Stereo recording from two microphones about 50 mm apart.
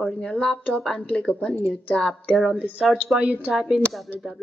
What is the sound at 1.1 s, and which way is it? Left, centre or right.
Speech, left.